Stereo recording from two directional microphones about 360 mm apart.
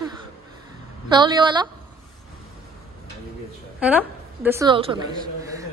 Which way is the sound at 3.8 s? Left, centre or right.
Centre.